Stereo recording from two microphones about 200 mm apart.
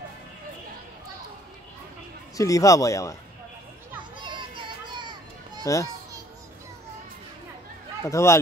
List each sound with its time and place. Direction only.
2.3 s speech: 15° left (ahead or behind)
4.2 s children playing: 25° right (ahead or behind)
5.6 s a child's voice: 15° left (ahead or behind)
8.0 s speech: 15° left (ahead or behind)